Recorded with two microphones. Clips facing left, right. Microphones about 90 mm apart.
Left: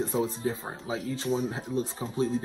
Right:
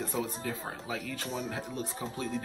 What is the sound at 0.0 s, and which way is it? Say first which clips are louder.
Speech: left 6 dB; 30° left (ahead or behind).